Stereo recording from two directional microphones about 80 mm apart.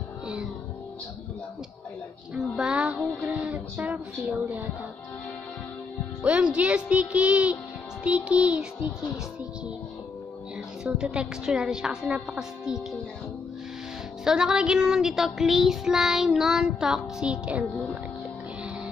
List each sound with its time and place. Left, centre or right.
2.5 s a woman's voice: centre
3.3 s music: centre
3.9 s a woman's voice: centre
6.2 s a woman's voice: centre
10.8 s a woman's voice: centre
14.2 s child singing: centre